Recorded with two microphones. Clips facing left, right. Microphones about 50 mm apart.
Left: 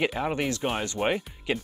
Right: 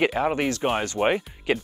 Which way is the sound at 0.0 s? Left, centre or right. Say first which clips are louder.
Right 4 dB; centre.